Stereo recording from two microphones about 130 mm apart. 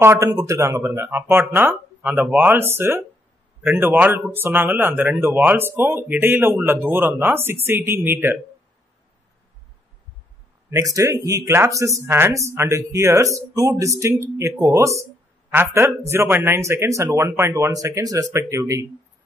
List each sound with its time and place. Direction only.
0.0 s speech: 25° right (ahead or behind)
10.7 s speech: 25° right (ahead or behind)